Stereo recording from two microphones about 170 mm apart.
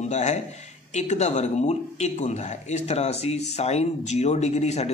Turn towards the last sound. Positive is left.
turn(degrees=40)  # may be behind; listen again after turning